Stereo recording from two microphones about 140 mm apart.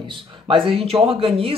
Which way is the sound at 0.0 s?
35° right (ahead or behind).